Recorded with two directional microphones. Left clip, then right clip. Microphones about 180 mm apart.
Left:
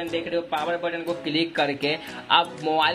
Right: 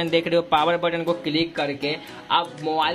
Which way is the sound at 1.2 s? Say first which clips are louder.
Even; 10° right (ahead or behind).